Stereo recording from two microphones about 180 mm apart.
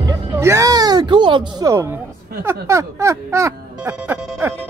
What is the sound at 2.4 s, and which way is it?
Music, 15° right (ahead or behind).